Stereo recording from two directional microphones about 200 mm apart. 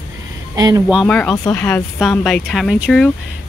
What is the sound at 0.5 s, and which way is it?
Speech, 20° right (ahead or behind).